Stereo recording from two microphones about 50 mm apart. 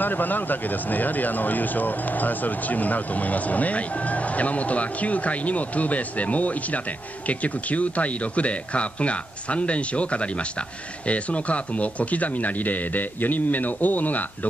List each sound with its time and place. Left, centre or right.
0.0 s speech: left